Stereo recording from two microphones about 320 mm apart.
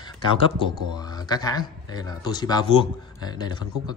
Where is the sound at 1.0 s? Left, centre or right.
Centre.